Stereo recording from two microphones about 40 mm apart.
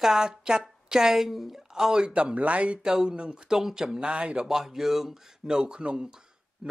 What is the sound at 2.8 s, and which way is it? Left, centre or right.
Speech, centre.